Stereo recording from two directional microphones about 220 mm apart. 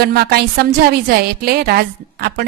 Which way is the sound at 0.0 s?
45° right (ahead or behind).